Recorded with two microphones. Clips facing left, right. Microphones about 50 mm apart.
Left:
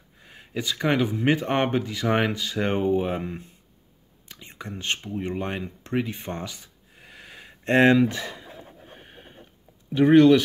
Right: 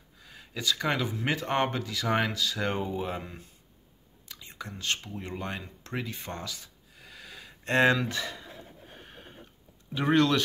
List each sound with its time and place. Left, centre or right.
0.2 s speech: left
4.3 s whispering: left
4.9 s a sound: left; by 9.3 s centre
9.9 s speech: centre